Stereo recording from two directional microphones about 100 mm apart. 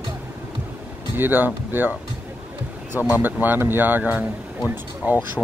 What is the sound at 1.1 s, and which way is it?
Speech, 20° right (ahead or behind).